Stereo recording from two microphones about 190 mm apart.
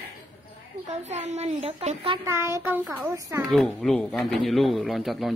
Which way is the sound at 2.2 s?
15° right (ahead or behind).